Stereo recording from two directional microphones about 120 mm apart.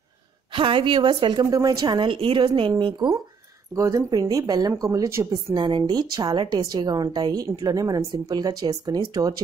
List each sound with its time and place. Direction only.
0.5 s a woman's voice: 45° right (ahead or behind)
3.7 s a woman's voice: 25° right (ahead or behind)
5.5 s a woman's voice: 40° right (ahead or behind)